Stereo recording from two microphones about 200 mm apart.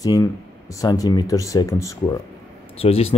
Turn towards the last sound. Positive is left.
turn(degrees=30)  # may be behind; listen again after turning